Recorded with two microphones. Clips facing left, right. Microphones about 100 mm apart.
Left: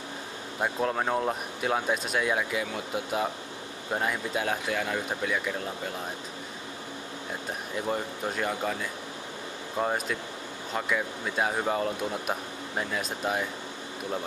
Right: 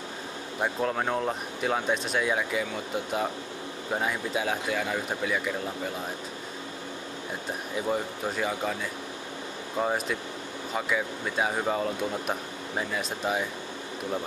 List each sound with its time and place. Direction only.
0.6 s speech: centre (ahead or behind)
7.7 s speech: centre (ahead or behind)
9.8 s speech: centre (ahead or behind)